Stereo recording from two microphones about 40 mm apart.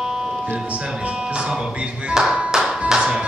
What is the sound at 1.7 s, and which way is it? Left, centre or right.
Music, right.